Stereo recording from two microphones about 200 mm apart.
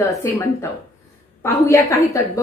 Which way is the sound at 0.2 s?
15° left (ahead or behind).